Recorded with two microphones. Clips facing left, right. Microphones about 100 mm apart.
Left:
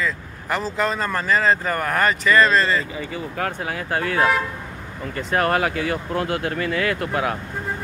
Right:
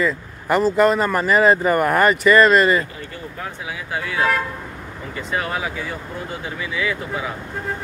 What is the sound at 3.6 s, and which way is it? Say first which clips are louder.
Speech: left 3 dB; 55° left (ahead or behind).